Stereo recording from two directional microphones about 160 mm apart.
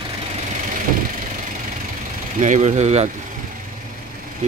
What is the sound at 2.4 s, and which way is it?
Speech, 50° right (ahead or behind).